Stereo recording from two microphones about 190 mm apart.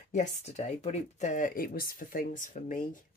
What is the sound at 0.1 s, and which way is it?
Speech, 35° left (ahead or behind).